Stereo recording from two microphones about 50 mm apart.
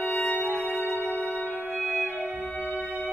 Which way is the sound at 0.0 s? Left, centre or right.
Left.